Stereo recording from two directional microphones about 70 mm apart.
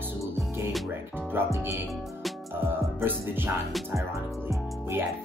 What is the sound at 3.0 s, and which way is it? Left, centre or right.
Music, right.